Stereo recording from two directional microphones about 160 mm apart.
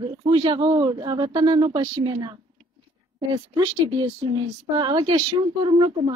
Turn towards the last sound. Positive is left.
turn(degrees=-30)  # may be behind; listen again after turning